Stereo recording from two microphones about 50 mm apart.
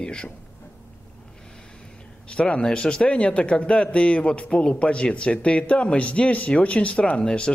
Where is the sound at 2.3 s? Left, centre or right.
Left.